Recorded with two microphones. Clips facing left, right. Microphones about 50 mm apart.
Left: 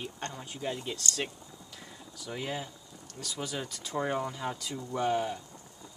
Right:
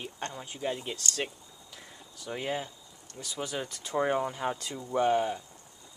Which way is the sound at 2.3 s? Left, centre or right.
Centre.